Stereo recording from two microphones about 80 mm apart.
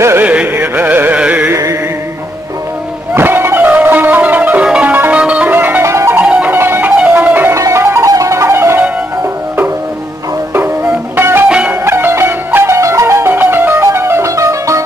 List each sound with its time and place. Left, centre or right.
0.2 s music: centre
1.5 s music: right
3.2 s music: right; by 4.9 s centre
4.9 s music: right
6.2 s music: centre
6.5 s music: right
7.5 s music: right
10.5 s music: right
11.4 s music: centre
11.8 s music: right
12.7 s music: right
13.3 s music: right